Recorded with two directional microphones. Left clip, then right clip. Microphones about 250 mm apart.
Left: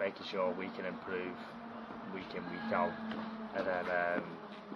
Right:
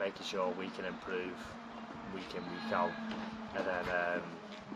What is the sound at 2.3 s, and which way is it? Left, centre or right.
Speech, centre.